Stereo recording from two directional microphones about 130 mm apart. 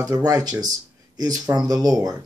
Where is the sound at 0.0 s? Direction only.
25° right (ahead or behind).